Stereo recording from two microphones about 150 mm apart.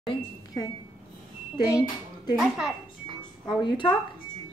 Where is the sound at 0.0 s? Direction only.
35° left (ahead or behind).